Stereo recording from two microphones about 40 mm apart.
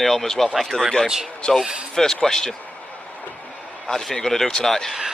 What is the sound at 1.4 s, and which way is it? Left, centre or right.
Speech, left.